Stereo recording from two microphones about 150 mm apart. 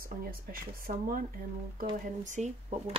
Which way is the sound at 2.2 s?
50° right (ahead or behind).